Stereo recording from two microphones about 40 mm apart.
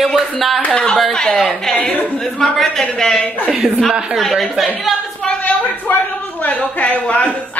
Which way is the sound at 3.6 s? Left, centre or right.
Centre.